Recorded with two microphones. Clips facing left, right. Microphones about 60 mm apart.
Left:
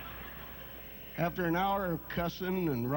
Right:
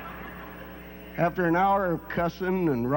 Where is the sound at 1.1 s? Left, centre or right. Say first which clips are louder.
Right 8 dB; right.